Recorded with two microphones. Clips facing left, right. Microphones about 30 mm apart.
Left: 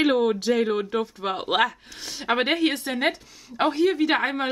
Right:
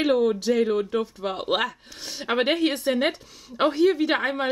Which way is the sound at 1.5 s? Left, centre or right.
Centre.